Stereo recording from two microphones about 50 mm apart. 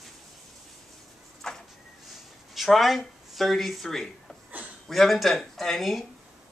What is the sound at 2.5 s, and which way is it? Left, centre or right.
Speech, centre.